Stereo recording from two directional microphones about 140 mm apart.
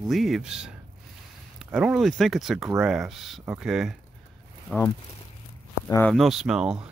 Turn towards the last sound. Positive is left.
turn(degrees=-5)  # may be behind; listen again after turning